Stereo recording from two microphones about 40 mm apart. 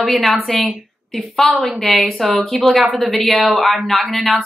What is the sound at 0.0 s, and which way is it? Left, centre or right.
A woman's voice, centre.